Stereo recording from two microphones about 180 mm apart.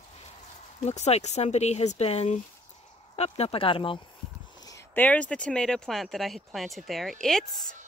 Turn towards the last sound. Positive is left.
turn(degrees=0)  # may be behind; listen again after turning